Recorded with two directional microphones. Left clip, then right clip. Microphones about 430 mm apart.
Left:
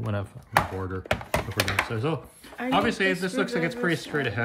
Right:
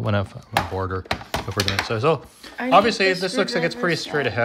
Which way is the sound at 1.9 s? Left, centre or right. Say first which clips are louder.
Right 9 dB; centre.